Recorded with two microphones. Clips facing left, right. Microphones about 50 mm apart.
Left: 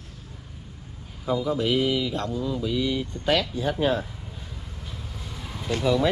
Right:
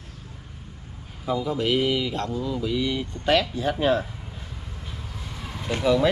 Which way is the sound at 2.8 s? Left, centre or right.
Right.